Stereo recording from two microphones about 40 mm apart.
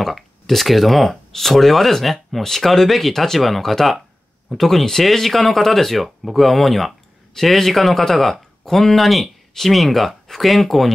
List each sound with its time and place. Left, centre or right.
0.0 s speech: centre